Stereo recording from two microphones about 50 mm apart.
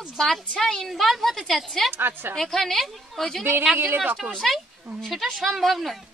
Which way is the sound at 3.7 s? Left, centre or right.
Right.